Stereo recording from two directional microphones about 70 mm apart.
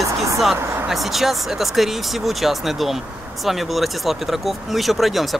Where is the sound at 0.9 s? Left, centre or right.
Centre.